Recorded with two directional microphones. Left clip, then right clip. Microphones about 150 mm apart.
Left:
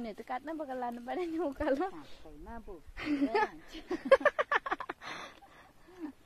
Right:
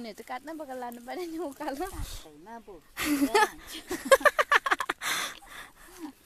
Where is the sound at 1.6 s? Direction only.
40° left (ahead or behind).